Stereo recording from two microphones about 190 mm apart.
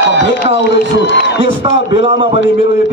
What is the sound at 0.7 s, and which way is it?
Speech, 65° left (ahead or behind).